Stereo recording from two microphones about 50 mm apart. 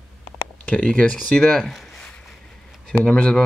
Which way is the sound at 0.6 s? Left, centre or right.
Left.